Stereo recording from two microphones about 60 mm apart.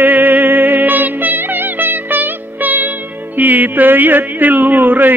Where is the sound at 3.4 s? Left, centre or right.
Right.